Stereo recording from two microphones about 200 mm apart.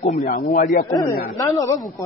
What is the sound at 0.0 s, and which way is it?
Speech, 40° left (ahead or behind).